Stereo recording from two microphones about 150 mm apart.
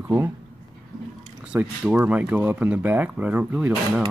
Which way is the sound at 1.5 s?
10° right (ahead or behind).